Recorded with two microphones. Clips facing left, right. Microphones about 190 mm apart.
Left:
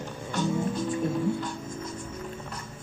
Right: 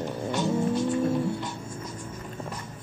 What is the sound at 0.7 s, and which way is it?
Music, 70° right (ahead or behind).